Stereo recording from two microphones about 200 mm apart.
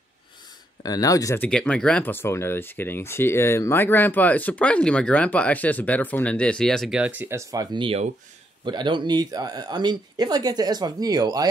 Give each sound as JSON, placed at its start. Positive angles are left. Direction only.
{"t": 0.8, "sound": "speech", "side_deg": 15}